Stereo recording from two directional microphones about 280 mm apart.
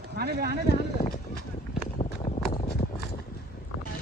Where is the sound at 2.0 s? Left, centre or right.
Left.